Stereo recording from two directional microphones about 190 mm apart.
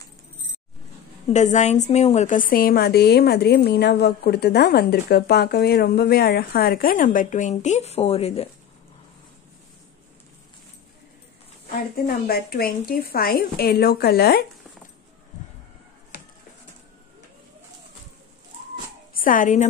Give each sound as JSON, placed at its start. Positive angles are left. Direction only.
{"t": 1.3, "sound": "a woman's voice", "side_deg": 40}
{"t": 12.3, "sound": "a woman's voice", "side_deg": 55}
{"t": 19.1, "sound": "speech", "side_deg": 45}